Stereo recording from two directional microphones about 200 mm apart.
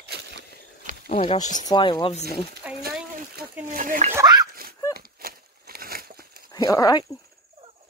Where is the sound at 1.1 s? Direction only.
25° left (ahead or behind).